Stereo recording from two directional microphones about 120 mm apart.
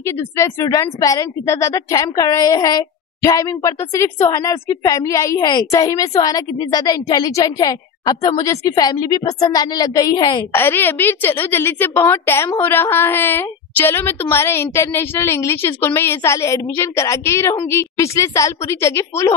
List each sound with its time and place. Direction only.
0.0 s a woman's voice: 25° left (ahead or behind)
10.5 s a woman's voice: 20° left (ahead or behind)